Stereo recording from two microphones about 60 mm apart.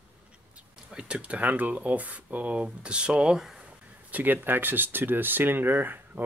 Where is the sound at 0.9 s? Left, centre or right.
Centre.